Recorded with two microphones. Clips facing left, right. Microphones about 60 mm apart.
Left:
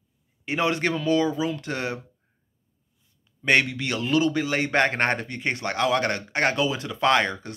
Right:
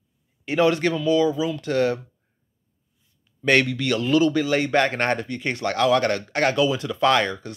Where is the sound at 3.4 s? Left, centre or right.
Centre.